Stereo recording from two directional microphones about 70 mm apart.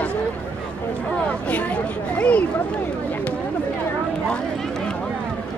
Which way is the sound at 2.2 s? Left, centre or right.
Left.